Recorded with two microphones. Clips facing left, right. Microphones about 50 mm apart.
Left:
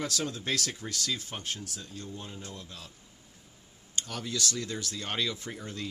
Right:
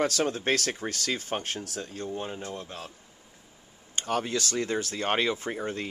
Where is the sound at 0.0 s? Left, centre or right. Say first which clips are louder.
Right 7 dB; right.